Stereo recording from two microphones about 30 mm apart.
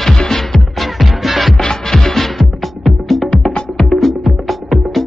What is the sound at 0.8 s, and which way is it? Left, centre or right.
Music, centre.